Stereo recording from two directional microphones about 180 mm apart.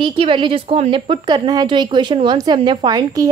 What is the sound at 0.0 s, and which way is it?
A woman's voice, 30° right (ahead or behind).